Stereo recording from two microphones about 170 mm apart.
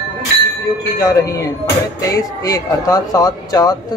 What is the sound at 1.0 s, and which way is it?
Speech, 20° left (ahead or behind).